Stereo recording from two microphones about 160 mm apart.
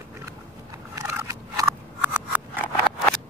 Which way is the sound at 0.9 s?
20° right (ahead or behind).